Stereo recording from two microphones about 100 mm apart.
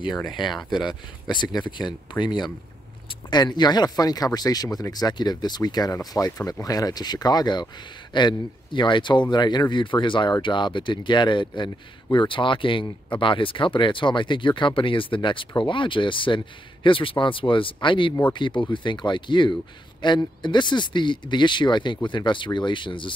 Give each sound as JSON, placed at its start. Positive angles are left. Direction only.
{"t": 1.3, "sound": "a man's voice", "side_deg": 50}